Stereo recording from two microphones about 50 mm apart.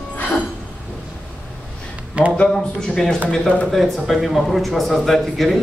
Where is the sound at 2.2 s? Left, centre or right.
Right.